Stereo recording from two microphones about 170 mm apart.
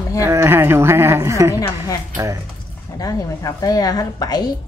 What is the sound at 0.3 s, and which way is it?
Speech, 15° right (ahead or behind).